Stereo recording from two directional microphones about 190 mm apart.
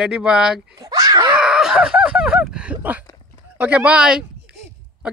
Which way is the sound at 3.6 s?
5° right (ahead or behind).